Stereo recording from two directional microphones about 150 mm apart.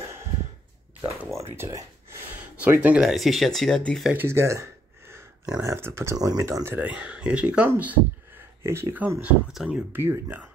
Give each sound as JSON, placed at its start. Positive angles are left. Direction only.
{"t": 1.6, "sound": "speech", "side_deg": -20}
{"t": 4.1, "sound": "a sound", "side_deg": -15}
{"t": 5.6, "sound": "speech", "side_deg": -20}